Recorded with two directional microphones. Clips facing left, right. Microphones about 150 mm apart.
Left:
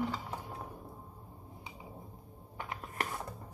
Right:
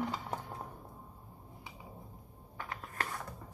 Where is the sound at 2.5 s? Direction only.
20° left (ahead or behind).